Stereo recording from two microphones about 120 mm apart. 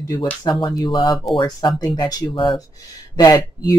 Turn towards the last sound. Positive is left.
turn(degrees=30)  # may be behind; listen again after turning